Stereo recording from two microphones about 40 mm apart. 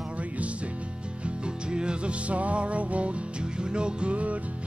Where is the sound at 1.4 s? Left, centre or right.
Right.